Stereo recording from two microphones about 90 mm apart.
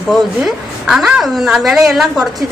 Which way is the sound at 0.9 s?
5° right (ahead or behind).